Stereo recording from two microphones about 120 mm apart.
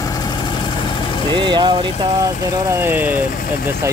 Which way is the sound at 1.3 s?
40° right (ahead or behind).